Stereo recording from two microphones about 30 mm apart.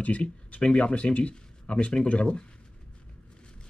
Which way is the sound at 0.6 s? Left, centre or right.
Left.